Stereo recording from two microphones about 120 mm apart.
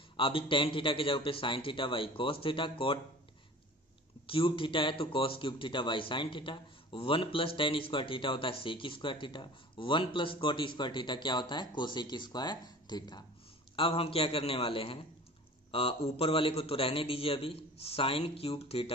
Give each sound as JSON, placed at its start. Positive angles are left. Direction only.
{"t": 0.2, "sound": "a man's voice", "side_deg": 50}
{"t": 4.3, "sound": "a man's voice", "side_deg": 45}
{"t": 13.7, "sound": "a man's voice", "side_deg": 50}